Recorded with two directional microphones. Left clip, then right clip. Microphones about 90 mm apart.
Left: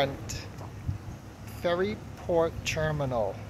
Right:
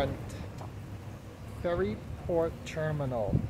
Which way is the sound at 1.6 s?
5° left (ahead or behind).